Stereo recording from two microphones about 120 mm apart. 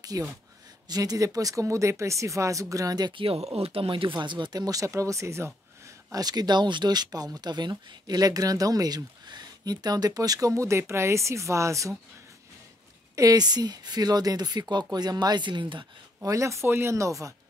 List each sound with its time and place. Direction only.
0.0 s speech: 30° right (ahead or behind)
6.1 s speech: 35° right (ahead or behind)
13.1 s speech: 30° right (ahead or behind)
16.2 s speech: 25° right (ahead or behind)